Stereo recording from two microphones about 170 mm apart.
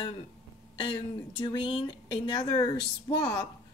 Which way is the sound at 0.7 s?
30° left (ahead or behind).